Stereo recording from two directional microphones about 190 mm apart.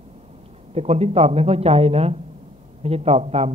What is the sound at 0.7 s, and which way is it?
Speech, 35° right (ahead or behind).